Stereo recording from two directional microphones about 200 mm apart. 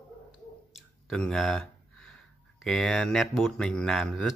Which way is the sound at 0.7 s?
Centre (ahead or behind).